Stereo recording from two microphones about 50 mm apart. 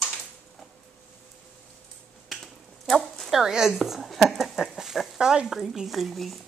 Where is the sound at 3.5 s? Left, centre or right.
Centre.